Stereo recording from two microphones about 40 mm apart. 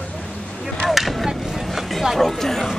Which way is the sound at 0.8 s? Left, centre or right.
Centre.